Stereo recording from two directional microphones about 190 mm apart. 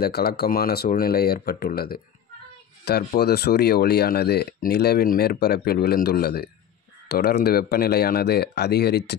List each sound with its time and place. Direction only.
0.0 s speech: 55° left (ahead or behind)